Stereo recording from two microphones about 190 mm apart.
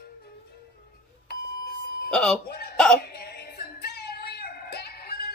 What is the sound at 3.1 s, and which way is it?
Music, 55° left (ahead or behind).